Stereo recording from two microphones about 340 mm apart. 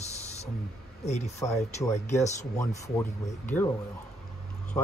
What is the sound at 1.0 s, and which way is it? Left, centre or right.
Speech, centre.